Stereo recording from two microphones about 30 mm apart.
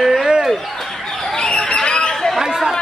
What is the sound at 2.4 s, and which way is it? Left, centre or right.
Chatter, centre.